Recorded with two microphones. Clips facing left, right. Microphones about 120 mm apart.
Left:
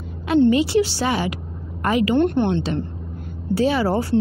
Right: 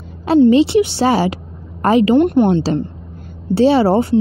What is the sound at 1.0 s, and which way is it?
A woman's voice, 35° right (ahead or behind).